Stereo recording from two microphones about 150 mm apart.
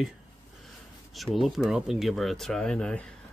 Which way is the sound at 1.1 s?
Centre (ahead or behind).